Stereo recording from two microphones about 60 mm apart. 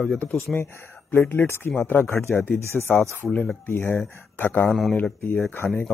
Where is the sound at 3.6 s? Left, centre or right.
Left.